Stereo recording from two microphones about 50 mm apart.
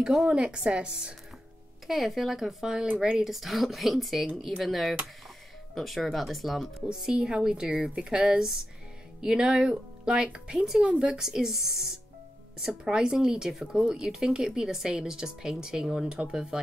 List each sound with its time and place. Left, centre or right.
0.3 s speech: right
1.9 s speech: centre
6.9 s speech: centre
11.1 s speech: centre